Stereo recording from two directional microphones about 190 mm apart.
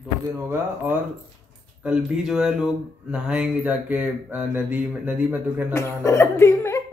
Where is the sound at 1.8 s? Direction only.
5° right (ahead or behind).